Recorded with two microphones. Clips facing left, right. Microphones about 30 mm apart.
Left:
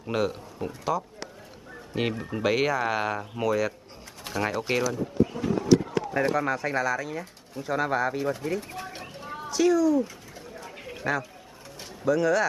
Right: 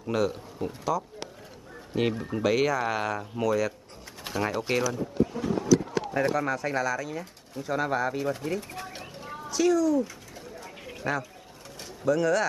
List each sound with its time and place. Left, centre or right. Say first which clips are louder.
0.0 s speech: even; centre
6.3 s speech: left 1 dB; centre
8.5 s bird: left 1 dB; centre
9.5 s speech: left 2 dB; centre
11.8 s a sound: left 1 dB; centre